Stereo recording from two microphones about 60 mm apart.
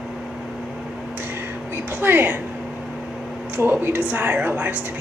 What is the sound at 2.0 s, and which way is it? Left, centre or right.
Speech, right.